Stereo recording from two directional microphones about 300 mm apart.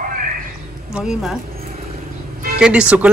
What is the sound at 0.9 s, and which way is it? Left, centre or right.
Speech, centre.